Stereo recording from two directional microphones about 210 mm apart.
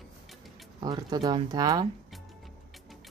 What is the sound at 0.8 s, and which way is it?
Speech, 20° right (ahead or behind).